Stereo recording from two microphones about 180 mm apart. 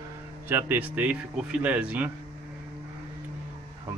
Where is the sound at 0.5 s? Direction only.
10° right (ahead or behind).